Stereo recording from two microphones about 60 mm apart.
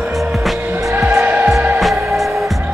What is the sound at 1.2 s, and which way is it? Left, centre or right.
Music, right.